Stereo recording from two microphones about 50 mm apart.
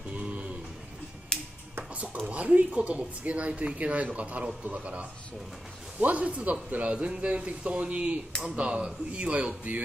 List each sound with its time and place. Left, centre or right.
0.1 s a sound: right
1.3 s music: centre
2.2 s a man's voice: right